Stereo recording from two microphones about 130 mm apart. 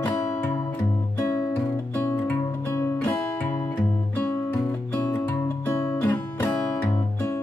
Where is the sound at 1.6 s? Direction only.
15° left (ahead or behind).